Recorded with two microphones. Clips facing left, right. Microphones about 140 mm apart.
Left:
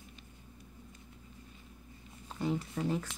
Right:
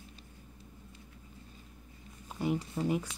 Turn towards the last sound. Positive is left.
turn(degrees=-15)  # may be behind; listen again after turning